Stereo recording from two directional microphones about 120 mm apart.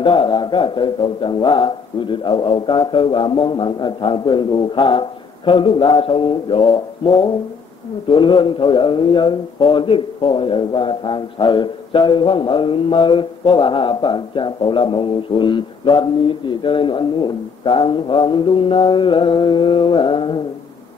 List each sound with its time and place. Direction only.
0.0 s a man's voice: 45° left (ahead or behind)